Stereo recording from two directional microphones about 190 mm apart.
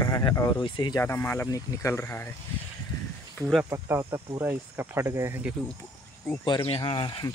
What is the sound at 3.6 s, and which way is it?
Speech, 15° right (ahead or behind).